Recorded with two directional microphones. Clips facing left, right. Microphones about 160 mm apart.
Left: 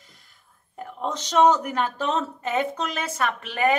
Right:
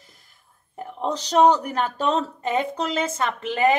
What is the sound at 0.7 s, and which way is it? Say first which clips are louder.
Speech: right 3 dB; 30° right (ahead or behind).